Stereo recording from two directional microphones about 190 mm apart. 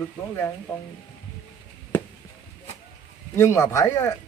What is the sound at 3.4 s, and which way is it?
Speech, 15° left (ahead or behind).